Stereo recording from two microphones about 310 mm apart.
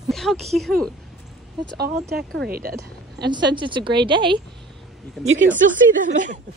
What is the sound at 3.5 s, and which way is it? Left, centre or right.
Speech, centre.